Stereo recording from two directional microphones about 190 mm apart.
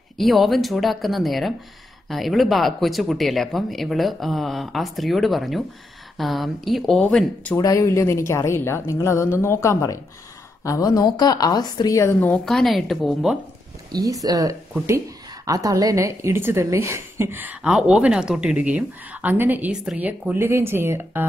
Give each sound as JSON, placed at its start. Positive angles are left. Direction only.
{"t": 0.2, "sound": "speech", "side_deg": 0}
{"t": 7.5, "sound": "a woman's voice", "side_deg": 20}
{"t": 13.9, "sound": "a woman's voice", "side_deg": -20}